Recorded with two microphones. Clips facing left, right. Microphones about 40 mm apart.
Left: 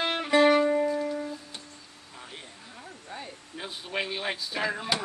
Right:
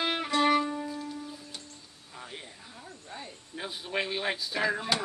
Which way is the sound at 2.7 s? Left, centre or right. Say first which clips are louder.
Left 3 dB; centre.